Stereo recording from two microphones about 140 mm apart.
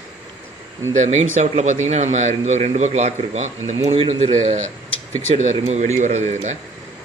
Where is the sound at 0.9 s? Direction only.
50° right (ahead or behind).